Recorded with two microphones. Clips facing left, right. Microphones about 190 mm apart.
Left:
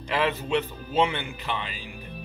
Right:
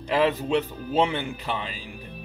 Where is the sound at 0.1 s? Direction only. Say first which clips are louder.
Right 3 dB; 40° right (ahead or behind).